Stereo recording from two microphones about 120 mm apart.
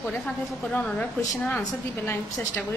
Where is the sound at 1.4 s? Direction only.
20° left (ahead or behind).